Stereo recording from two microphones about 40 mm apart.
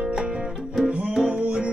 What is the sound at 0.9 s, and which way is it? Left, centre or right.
Music, right.